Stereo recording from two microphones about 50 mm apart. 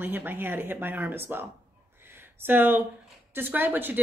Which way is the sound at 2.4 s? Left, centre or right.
Right.